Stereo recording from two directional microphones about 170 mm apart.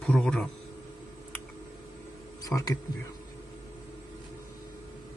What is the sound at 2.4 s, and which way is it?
Speech, 20° left (ahead or behind).